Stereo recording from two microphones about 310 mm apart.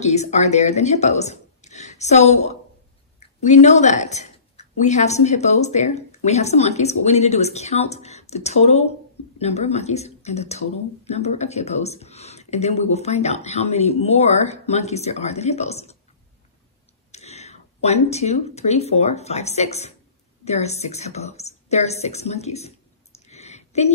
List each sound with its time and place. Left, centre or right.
0.0 s speech: left
17.1 s speech: left
23.1 s a sound: left